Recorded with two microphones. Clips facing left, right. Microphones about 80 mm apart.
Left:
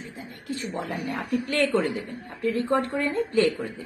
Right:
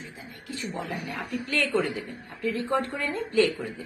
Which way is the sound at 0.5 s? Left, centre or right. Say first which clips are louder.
Left 3 dB; left.